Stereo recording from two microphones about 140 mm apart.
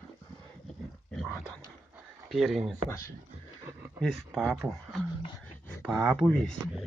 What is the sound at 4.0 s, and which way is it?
Speech, centre (ahead or behind).